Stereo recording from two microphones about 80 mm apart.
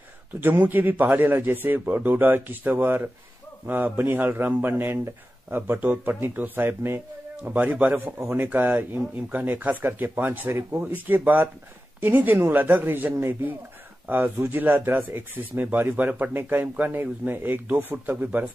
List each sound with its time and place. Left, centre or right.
0.4 s speech: right
8.2 s speech: right